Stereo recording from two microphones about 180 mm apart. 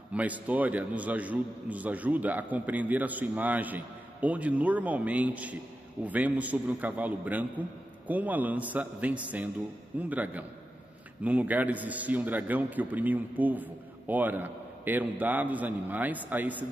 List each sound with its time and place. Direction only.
0.1 s a man's voice: 10° right (ahead or behind)